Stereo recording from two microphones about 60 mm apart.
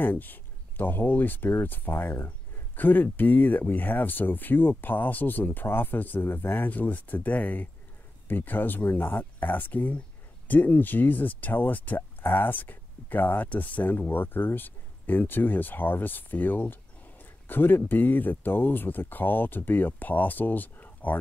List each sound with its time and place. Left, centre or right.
0.0 s speech: left